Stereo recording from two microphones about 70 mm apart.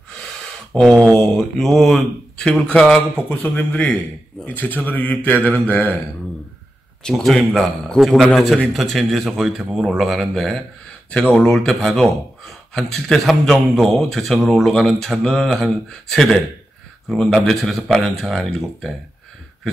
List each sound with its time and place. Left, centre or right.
0.7 s a man's voice: centre
2.3 s a man's voice: centre
7.0 s a man's voice: centre
11.1 s a man's voice: centre
11.5 s a man's voice: centre